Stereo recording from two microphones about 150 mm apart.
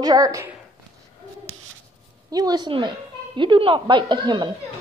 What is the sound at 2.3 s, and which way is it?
A woman's voice, 25° right (ahead or behind).